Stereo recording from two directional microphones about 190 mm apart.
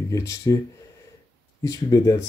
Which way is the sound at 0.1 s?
15° left (ahead or behind).